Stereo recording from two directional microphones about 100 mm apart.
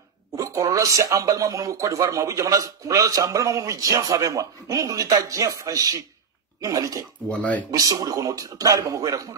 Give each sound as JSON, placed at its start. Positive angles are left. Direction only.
{"t": 0.4, "sound": "speech", "side_deg": -35}
{"t": 7.2, "sound": "speech", "side_deg": 15}
{"t": 7.7, "sound": "speech", "side_deg": -35}